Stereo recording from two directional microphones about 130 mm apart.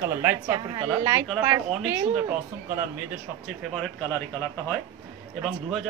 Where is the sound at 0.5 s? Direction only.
35° right (ahead or behind).